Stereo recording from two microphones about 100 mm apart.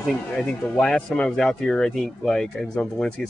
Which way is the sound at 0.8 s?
10° left (ahead or behind).